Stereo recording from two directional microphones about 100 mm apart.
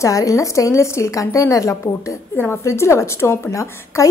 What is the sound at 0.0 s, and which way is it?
A woman's voice, 35° left (ahead or behind).